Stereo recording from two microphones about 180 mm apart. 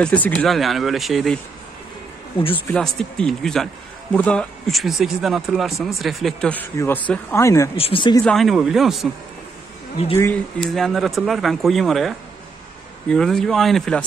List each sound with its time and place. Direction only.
0.0 s speech: 10° left (ahead or behind)
2.5 s speech: 5° left (ahead or behind)
7.7 s speech: 30° left (ahead or behind)
8.2 s speech: 5° left (ahead or behind)
10.1 s speech: 15° left (ahead or behind)
10.7 s speech: centre (ahead or behind)